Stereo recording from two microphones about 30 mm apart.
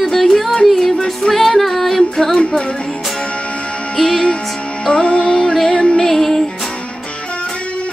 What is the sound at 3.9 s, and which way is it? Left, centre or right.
Music, centre.